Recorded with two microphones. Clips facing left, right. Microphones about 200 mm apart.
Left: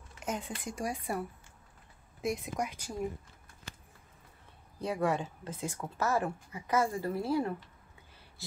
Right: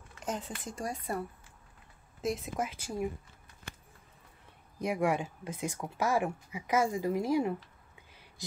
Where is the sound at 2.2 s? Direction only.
Centre (ahead or behind).